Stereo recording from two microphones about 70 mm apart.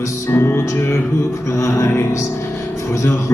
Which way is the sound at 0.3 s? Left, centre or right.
Left.